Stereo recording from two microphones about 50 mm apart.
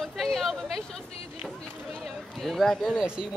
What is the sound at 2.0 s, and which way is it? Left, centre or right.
Run, centre.